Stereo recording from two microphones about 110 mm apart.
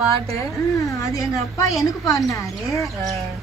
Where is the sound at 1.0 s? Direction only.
30° left (ahead or behind).